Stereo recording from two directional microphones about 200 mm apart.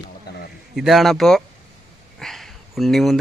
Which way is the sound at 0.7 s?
Centre (ahead or behind).